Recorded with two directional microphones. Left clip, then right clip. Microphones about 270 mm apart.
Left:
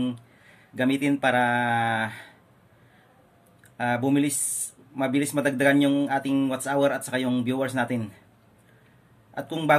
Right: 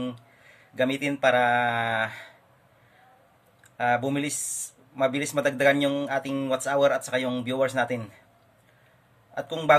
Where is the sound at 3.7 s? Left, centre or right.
Centre.